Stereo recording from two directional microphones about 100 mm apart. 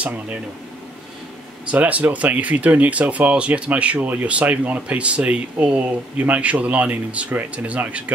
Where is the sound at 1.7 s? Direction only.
15° right (ahead or behind).